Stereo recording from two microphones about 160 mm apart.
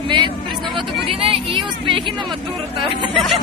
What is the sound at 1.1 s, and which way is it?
Speech, 35° right (ahead or behind).